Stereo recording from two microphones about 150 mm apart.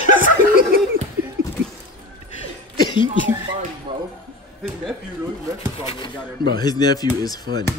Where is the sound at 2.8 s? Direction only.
30° left (ahead or behind).